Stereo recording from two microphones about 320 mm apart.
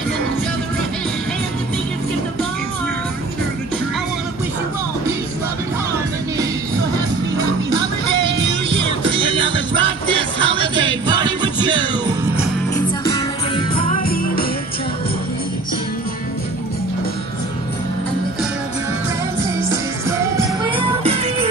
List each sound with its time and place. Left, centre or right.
8.6 s music: centre
12.7 s music: centre; by 14.4 s left
19.7 s music: centre